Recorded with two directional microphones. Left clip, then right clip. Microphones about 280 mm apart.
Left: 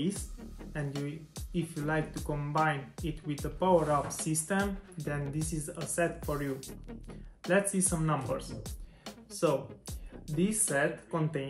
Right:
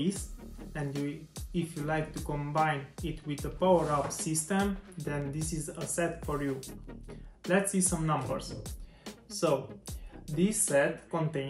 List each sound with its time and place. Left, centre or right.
0.7 s speech: centre